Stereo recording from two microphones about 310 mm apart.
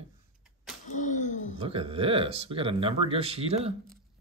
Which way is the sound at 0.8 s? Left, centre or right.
Left.